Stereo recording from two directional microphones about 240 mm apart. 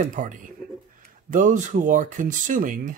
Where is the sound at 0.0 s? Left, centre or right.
Right.